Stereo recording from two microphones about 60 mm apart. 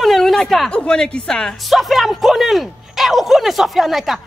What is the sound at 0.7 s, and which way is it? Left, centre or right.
Speech, centre.